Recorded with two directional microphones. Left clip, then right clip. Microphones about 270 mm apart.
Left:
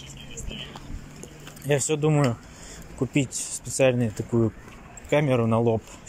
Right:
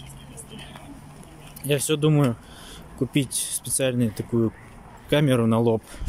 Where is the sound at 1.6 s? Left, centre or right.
Centre.